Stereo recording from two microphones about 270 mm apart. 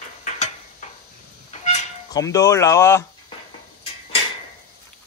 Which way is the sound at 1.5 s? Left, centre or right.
Left.